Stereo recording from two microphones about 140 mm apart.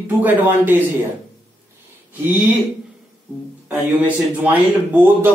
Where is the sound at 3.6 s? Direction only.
15° right (ahead or behind).